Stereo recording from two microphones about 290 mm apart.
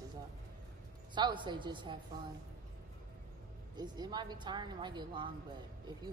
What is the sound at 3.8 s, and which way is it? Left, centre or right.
A woman's voice, centre.